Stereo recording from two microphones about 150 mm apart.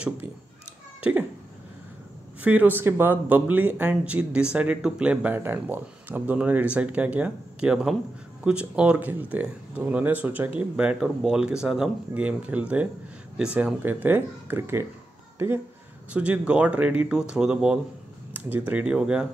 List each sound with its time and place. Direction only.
2.4 s speech: 10° right (ahead or behind)
18.3 s computer keyboard: 10° right (ahead or behind)
18.7 s speech: 10° right (ahead or behind)